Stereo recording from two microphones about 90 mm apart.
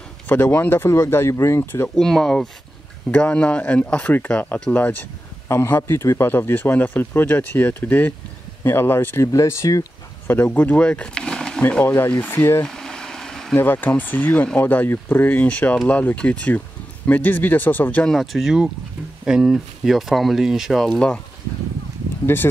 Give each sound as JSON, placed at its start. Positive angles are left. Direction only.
{"t": 0.3, "sound": "speech", "side_deg": 20}
{"t": 0.8, "sound": "speech", "side_deg": 40}
{"t": 1.1, "sound": "speech", "side_deg": 25}
{"t": 2.0, "sound": "speech", "side_deg": 5}
{"t": 5.5, "sound": "speech", "side_deg": 30}
{"t": 10.2, "sound": "speech", "side_deg": 20}
{"t": 12.6, "sound": "a sound", "side_deg": 5}
{"t": 13.6, "sound": "speech", "side_deg": 20}
{"t": 18.0, "sound": "speech", "side_deg": 0}
{"t": 22.2, "sound": "speech", "side_deg": 25}